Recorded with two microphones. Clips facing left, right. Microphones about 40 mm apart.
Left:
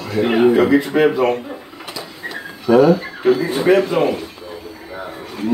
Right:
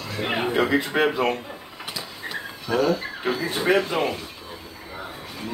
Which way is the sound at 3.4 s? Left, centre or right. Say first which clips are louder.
Left 7 dB; left.